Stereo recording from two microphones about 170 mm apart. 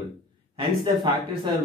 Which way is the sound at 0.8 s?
30° right (ahead or behind).